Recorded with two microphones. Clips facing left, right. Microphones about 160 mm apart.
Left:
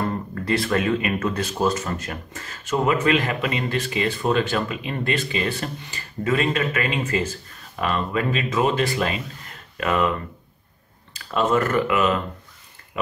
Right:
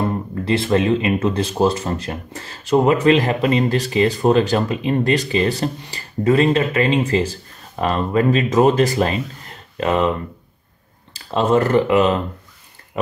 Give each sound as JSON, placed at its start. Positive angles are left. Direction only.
{"t": 0.0, "sound": "speech", "side_deg": -20}
{"t": 11.1, "sound": "speech", "side_deg": -30}
{"t": 12.9, "sound": "pig", "side_deg": -35}